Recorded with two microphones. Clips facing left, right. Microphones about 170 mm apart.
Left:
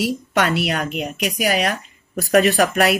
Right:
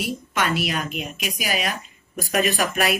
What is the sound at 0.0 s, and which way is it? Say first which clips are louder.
Speech: left 6 dB; 70° left (ahead or behind).